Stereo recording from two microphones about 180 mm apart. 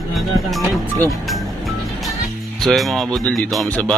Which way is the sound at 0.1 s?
Centre (ahead or behind).